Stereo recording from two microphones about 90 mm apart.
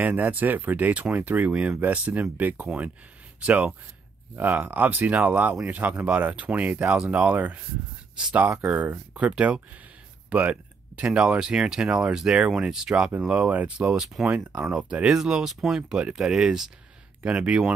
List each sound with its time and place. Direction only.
0.0 s speech: 20° right (ahead or behind)